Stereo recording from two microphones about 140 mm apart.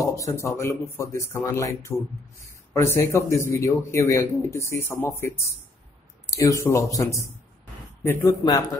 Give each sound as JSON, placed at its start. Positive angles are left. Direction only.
{"t": 0.0, "sound": "speech", "side_deg": 20}